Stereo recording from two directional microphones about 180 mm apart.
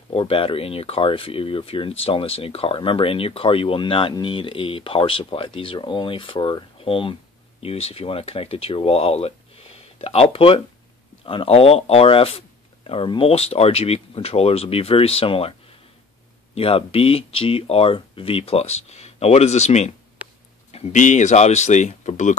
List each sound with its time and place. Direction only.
0.1 s speech: 30° left (ahead or behind)
16.5 s speech: 30° left (ahead or behind)